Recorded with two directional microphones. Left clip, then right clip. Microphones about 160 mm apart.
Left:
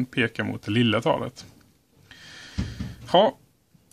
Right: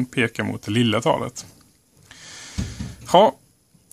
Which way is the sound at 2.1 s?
25° right (ahead or behind).